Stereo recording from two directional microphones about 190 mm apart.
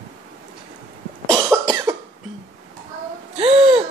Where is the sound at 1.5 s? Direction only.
15° right (ahead or behind).